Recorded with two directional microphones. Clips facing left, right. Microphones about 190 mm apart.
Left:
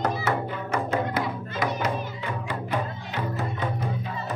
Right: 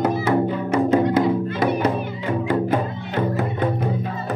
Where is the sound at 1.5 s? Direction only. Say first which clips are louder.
Right 7 dB; 60° right (ahead or behind).